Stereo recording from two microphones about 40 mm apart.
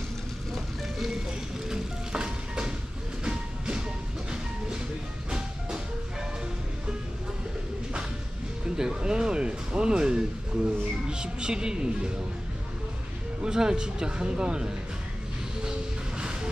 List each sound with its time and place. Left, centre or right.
1.7 s music: centre
3.3 s train: right
8.6 s music: centre
13.4 s speech: centre